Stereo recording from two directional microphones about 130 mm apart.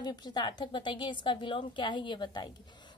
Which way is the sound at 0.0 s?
35° left (ahead or behind).